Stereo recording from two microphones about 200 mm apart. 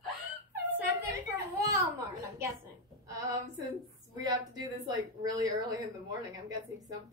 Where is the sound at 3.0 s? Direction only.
15° right (ahead or behind).